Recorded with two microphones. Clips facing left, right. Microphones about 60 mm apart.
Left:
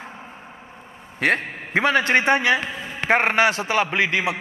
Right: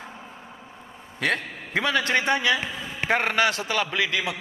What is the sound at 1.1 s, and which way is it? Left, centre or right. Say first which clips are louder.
A man's voice: left 5 dB; left.